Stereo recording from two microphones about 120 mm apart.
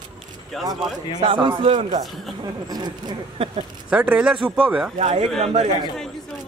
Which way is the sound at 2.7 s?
35° right (ahead or behind).